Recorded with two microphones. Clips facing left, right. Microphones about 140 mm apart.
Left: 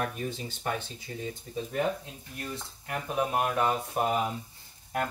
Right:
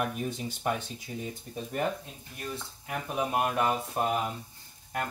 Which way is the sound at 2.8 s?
10° right (ahead or behind).